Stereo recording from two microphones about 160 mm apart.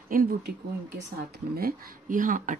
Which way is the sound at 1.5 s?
60° right (ahead or behind).